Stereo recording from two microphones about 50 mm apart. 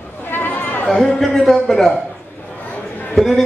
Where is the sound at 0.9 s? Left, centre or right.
Centre.